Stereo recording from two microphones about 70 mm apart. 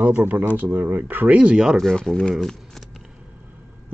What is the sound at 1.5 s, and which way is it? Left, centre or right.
Speech, centre.